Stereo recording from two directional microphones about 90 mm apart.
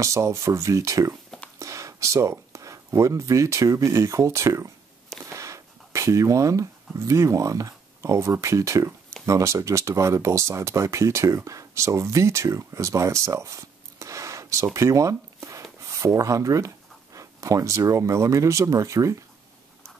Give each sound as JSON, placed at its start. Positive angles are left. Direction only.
{"t": 0.0, "sound": "speech", "side_deg": -35}